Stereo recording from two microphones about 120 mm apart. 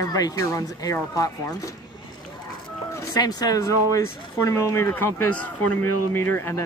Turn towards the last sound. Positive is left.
turn(degrees=20)  # may be behind; listen again after turning